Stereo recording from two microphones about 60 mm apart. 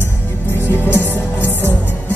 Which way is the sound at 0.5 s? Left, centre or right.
Left.